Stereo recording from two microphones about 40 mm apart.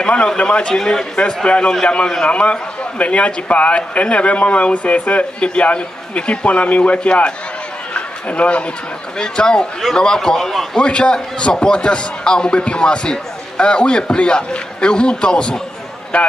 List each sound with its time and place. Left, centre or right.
0.4 s speech: left
0.7 s a man's voice: centre
1.2 s a man's voice: left
5.4 s a man's voice: left
7.9 s chatter: left
9.2 s a man's voice: centre
10.8 s a man's voice: left